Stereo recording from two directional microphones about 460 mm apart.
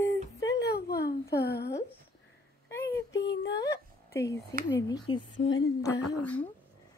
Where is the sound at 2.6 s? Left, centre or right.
Centre.